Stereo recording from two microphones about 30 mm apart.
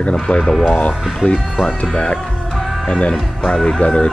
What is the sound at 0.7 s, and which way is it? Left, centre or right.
Speech, left.